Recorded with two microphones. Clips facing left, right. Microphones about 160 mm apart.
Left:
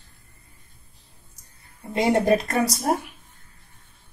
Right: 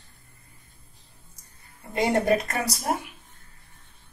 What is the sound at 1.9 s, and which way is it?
Speech, 20° left (ahead or behind).